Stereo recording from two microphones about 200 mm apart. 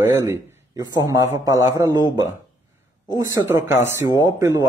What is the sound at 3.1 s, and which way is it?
Speech, 15° right (ahead or behind).